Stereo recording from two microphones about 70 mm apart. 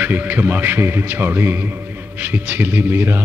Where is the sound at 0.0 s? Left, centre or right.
Right.